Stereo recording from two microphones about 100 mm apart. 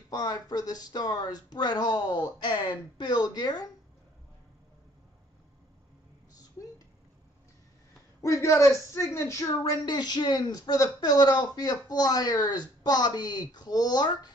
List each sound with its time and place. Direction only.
0.1 s speech: 40° left (ahead or behind)
8.2 s a man's voice: 30° left (ahead or behind)